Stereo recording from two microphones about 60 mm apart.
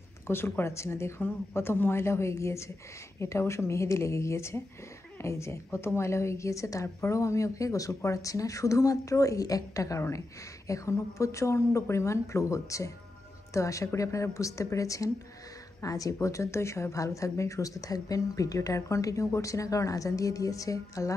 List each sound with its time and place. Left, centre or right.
0.3 s a woman's voice: left